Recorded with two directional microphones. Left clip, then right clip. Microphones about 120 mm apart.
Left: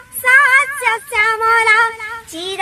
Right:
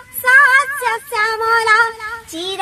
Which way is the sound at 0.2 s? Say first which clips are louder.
Even; 10° left (ahead or behind).